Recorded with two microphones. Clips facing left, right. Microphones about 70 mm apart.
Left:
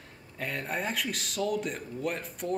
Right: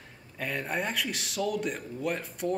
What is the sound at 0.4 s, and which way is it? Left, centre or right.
Speech, centre.